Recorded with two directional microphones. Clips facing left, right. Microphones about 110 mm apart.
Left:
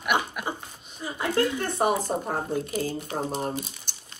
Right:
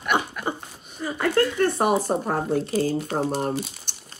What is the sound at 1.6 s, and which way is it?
Speech, 55° right (ahead or behind).